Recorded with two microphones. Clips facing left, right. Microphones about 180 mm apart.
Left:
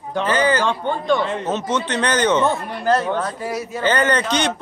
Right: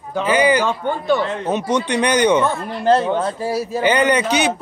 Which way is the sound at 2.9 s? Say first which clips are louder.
Right 3 dB; 25° right (ahead or behind).